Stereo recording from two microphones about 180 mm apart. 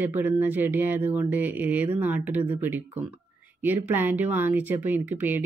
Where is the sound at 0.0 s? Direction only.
10° right (ahead or behind).